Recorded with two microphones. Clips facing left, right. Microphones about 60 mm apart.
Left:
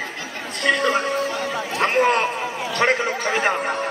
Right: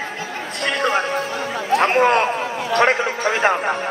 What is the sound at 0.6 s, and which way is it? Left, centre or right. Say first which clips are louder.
Music: even; right.